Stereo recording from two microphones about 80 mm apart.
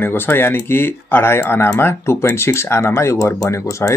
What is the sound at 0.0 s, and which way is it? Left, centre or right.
Speech, left.